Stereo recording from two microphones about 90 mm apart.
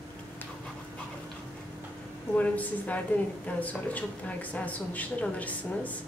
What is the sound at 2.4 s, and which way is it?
Speech, 15° left (ahead or behind).